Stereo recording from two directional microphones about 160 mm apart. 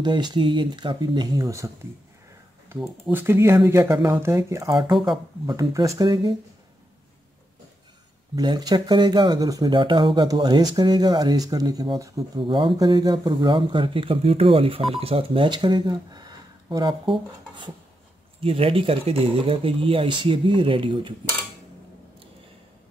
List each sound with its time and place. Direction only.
0.0 s speech: 25° right (ahead or behind)
3.1 s speech: 15° right (ahead or behind)
4.6 s speech: 30° right (ahead or behind)
8.4 s speech: 25° right (ahead or behind)